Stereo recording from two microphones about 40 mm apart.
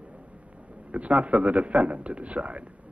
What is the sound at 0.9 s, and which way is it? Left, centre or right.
A man's voice, right.